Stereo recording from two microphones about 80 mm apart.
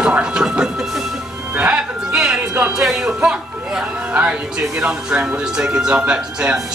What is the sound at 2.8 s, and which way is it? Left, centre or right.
Speech, centre.